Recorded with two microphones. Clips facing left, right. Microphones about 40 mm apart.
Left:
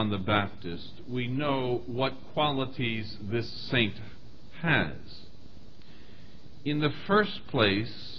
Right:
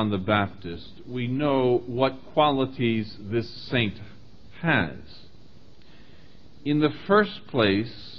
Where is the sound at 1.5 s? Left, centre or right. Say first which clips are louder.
Right 8 dB; centre.